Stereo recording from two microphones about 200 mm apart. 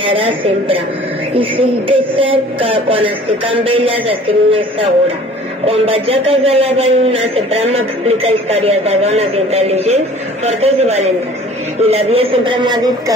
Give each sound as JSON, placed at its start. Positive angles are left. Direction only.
{"t": 0.0, "sound": "a man's voice", "side_deg": -25}